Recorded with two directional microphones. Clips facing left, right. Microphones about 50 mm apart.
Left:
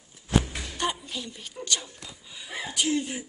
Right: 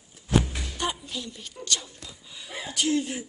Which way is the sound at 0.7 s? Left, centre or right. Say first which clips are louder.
Left 1 dB; centre.